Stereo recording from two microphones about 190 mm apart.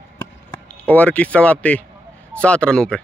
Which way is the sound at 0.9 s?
10° left (ahead or behind).